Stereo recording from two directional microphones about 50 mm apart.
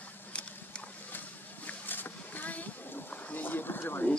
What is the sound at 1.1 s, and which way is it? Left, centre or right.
Boat, left.